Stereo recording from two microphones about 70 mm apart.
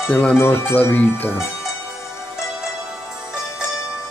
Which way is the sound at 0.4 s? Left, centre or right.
Left.